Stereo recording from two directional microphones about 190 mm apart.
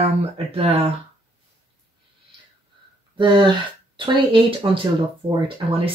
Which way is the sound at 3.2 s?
25° right (ahead or behind).